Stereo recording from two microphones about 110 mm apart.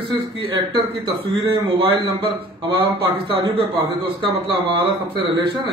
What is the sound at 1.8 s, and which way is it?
A man's voice, 50° right (ahead or behind).